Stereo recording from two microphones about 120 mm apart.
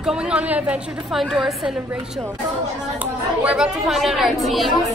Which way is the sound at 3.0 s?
10° right (ahead or behind).